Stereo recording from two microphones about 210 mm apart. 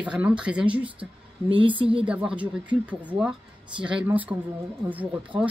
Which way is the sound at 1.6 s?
25° right (ahead or behind).